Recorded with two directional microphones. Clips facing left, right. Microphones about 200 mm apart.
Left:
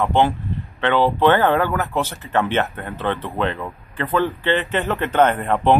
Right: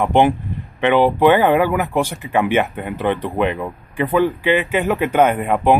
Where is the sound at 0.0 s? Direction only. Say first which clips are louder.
Right 3 dB; 15° right (ahead or behind).